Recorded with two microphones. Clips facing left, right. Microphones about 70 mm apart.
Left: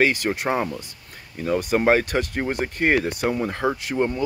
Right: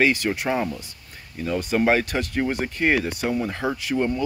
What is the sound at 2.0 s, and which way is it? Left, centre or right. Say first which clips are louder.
Speech: even; left.